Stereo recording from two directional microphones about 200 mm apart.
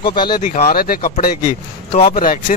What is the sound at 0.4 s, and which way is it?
Speech, 45° left (ahead or behind).